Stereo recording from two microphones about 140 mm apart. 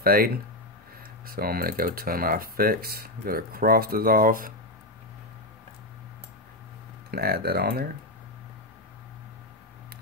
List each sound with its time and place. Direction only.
0.0 s speech: 90° right
7.1 s speech: 90° right